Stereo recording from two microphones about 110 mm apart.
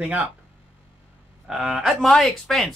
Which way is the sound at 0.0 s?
10° right (ahead or behind).